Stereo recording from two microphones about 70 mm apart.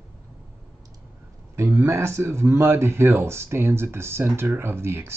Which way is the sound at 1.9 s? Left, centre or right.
Right.